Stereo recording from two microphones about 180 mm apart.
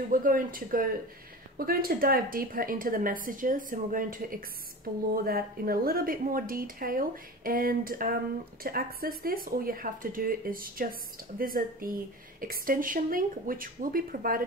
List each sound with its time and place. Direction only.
0.1 s speech: 50° right (ahead or behind)